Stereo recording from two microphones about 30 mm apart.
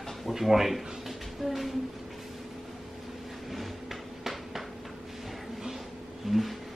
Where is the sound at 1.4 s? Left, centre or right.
Centre.